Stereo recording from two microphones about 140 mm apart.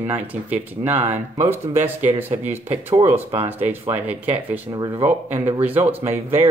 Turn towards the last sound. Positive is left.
turn(degrees=-15)  # may be behind; listen again after turning